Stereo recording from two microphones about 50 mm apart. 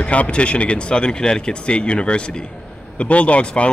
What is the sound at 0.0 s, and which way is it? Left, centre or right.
Speech, left.